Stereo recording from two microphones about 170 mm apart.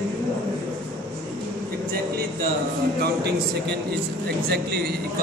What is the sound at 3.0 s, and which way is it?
A man's voice, 75° right (ahead or behind).